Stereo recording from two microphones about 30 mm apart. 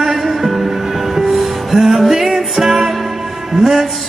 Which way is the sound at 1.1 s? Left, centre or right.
Centre.